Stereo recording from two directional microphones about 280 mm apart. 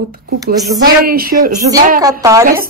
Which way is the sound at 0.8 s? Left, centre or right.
Right.